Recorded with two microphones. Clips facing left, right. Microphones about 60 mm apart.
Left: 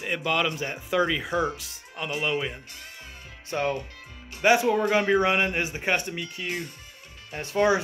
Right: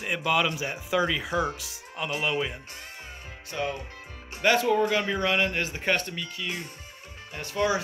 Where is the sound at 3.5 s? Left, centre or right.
Left.